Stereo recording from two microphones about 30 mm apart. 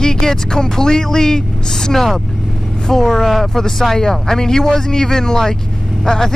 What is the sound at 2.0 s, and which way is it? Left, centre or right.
Speech, centre.